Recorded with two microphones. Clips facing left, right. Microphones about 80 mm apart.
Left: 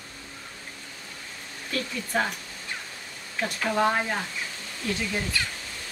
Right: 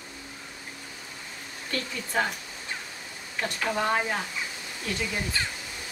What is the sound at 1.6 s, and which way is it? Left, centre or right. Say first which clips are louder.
Speech: left 2 dB; centre.